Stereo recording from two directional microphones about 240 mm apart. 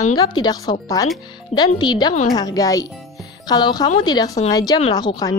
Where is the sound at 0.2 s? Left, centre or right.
Centre.